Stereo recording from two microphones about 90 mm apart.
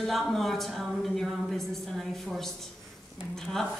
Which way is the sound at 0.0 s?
Centre (ahead or behind).